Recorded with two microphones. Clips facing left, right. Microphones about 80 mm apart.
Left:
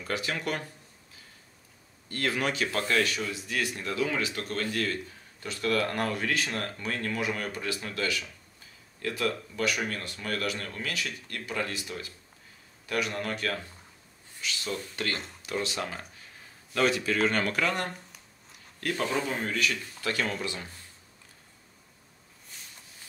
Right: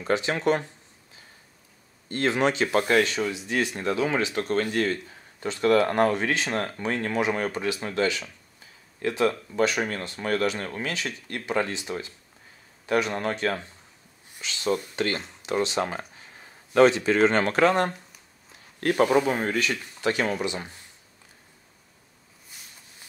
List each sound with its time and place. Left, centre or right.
0.0 s speech: right
2.0 s speech: right
18.9 s speech: right
19.2 s speech: right